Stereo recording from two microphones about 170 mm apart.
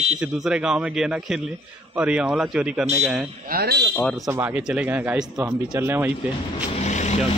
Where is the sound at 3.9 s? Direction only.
5° left (ahead or behind).